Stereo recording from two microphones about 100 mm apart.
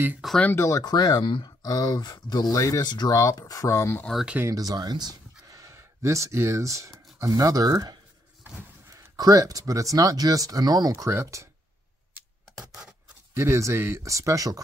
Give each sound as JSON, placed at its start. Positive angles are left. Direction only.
{"t": 0.4, "sound": "speech", "side_deg": 25}
{"t": 1.2, "sound": "speech", "side_deg": 50}
{"t": 2.5, "sound": "speech", "side_deg": 35}
{"t": 2.8, "sound": "speech", "side_deg": 45}
{"t": 3.2, "sound": "speech", "side_deg": 35}
{"t": 4.5, "sound": "speech", "side_deg": -40}
{"t": 8.9, "sound": "speech", "side_deg": -35}
{"t": 12.5, "sound": "a sound", "side_deg": -5}
{"t": 13.4, "sound": "speech", "side_deg": -25}